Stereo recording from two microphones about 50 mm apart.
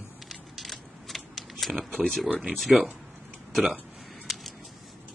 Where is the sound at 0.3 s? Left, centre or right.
Centre.